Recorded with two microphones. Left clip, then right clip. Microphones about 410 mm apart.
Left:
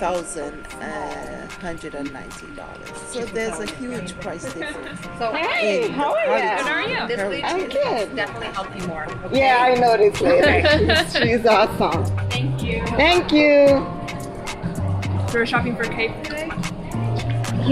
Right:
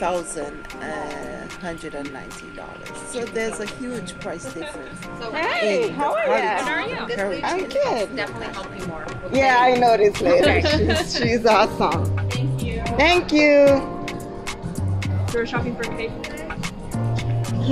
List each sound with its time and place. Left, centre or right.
0.0 s speech: centre
3.2 s speech: centre
6.7 s a woman's voice: left
7.2 s a woman's voice: centre
10.6 s speech: centre
11.2 s speech: centre
15.4 s speech: centre